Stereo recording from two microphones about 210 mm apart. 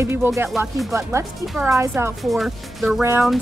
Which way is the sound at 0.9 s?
10° right (ahead or behind).